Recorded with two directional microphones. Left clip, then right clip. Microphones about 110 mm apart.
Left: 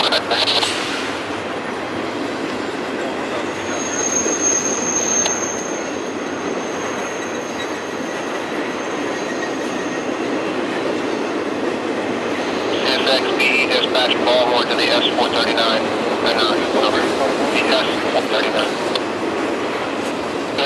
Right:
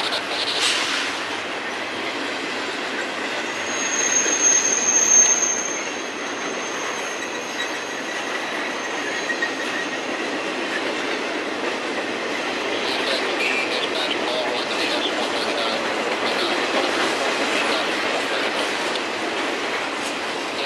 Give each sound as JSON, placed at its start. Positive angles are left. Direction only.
{"t": 0.0, "sound": "vehicle", "side_deg": 15}
{"t": 4.0, "sound": "jet engine", "side_deg": -15}
{"t": 13.1, "sound": "vehicle", "side_deg": 15}
{"t": 17.0, "sound": "a sound", "side_deg": -15}